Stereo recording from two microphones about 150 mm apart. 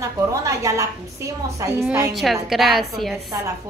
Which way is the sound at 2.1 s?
Centre (ahead or behind).